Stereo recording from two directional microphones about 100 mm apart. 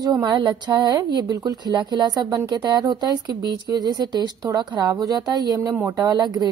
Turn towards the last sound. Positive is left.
turn(degrees=-45)  # may be behind; listen again after turning